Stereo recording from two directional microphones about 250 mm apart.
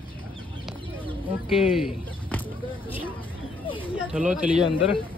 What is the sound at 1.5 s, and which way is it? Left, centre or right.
Speech, centre.